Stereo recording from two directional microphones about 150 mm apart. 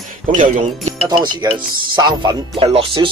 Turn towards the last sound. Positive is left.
turn(degrees=-35)  # may be behind; listen again after turning